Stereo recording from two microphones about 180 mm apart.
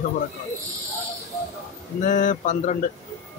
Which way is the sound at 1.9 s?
45° left (ahead or behind).